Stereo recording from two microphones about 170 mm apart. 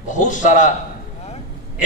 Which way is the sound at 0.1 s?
50° left (ahead or behind).